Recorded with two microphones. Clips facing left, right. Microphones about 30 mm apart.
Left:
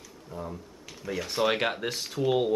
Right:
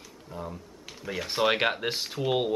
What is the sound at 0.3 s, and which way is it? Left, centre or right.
Speech, right.